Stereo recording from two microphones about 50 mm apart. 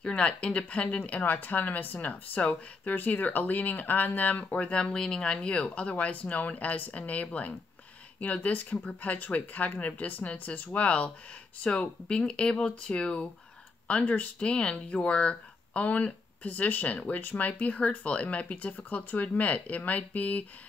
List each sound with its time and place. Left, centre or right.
0.0 s speech: left
4.7 s speech: centre